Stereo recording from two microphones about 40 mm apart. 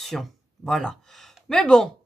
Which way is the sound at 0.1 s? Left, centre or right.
Centre.